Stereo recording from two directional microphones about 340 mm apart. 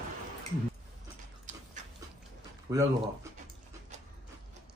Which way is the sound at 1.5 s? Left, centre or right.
Right.